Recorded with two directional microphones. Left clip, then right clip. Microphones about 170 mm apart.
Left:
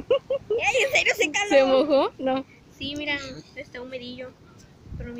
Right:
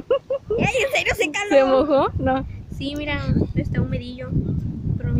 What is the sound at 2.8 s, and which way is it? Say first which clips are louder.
Speech: right 2 dB; 55° right (ahead or behind).